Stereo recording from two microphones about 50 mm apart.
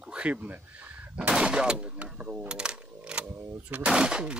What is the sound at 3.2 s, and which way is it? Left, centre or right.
Speech, right.